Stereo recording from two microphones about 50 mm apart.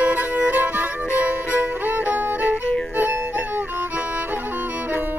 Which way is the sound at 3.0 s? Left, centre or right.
Right.